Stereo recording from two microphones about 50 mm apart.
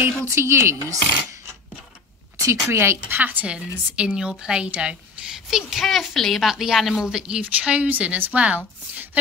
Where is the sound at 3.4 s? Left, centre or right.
Right.